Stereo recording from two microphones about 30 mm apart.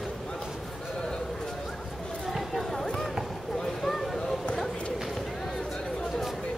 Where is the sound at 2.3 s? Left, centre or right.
Centre.